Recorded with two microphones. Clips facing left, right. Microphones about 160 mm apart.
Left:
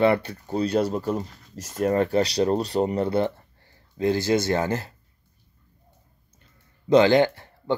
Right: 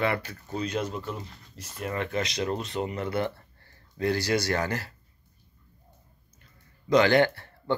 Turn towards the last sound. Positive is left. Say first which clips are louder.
# left 3 dB
turn(degrees=15)  # may be behind; listen again after turning